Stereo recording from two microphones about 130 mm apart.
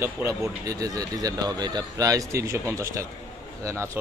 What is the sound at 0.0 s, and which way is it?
Speech, 20° right (ahead or behind).